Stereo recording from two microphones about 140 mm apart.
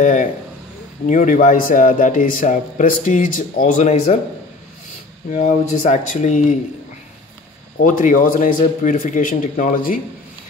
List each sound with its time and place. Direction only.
0.0 s a man's voice: 65° left (ahead or behind)
5.3 s speech: 60° left (ahead or behind)
7.8 s a man's voice: 70° left (ahead or behind)